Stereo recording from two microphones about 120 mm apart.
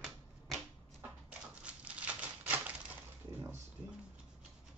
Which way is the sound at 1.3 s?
10° right (ahead or behind).